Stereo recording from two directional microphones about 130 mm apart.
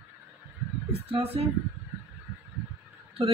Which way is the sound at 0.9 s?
50° right (ahead or behind).